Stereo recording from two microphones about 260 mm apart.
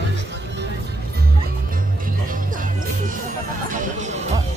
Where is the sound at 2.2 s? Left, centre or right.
Right.